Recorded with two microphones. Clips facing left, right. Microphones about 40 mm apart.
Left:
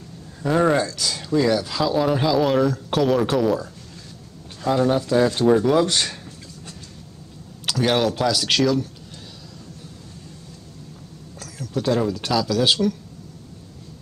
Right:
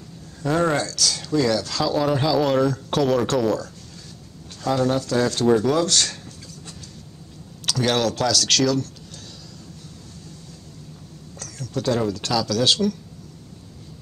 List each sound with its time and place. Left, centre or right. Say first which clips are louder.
0.4 s speech: left 2 dB; centre
4.6 s speech: left 2 dB; centre
7.6 s speech: left 1 dB; centre
11.3 s speech: left 2 dB; centre